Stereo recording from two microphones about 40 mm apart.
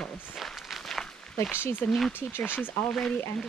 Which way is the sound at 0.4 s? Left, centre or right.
Centre.